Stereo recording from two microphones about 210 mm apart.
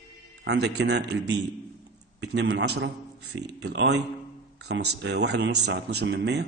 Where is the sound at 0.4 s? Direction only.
55° right (ahead or behind).